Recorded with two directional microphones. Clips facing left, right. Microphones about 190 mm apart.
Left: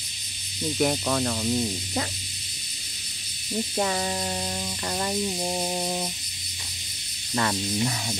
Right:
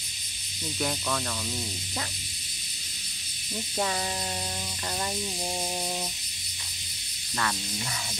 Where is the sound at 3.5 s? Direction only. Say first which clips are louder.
Left 4 dB; 30° left (ahead or behind).